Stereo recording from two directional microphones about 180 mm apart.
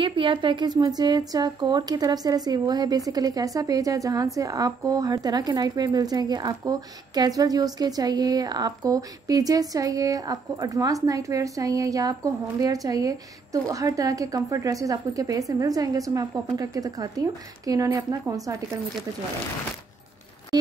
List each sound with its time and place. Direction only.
0.0 s speech: 30° right (ahead or behind)